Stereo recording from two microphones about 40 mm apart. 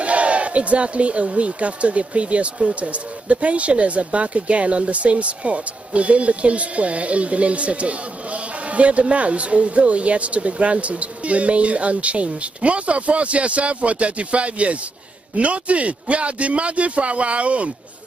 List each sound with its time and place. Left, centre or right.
0.0 s speech: right